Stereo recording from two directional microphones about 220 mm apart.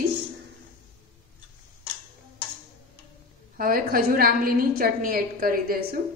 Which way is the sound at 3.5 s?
40° right (ahead or behind).